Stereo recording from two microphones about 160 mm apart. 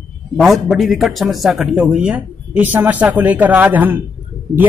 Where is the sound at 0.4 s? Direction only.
Centre (ahead or behind).